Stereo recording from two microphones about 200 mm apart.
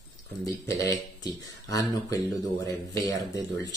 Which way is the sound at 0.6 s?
15° left (ahead or behind).